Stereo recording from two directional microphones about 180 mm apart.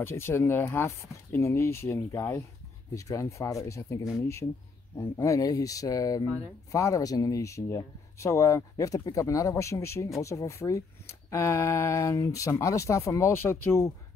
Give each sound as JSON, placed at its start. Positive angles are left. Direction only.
{"t": 0.0, "sound": "speech", "side_deg": 15}